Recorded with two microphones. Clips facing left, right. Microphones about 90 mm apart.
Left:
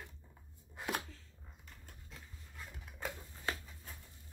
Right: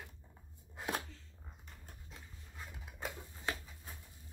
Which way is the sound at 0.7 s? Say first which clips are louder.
Even; 20° right (ahead or behind).